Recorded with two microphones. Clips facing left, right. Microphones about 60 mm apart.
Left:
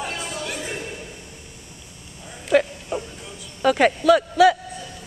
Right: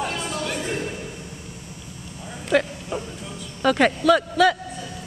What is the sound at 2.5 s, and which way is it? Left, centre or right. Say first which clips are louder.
Speech: left 2 dB; centre.